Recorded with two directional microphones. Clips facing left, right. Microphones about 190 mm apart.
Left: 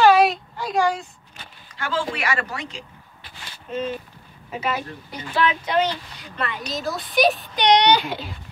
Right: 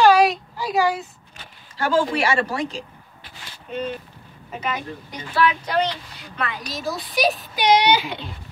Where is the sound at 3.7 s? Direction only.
5° left (ahead or behind).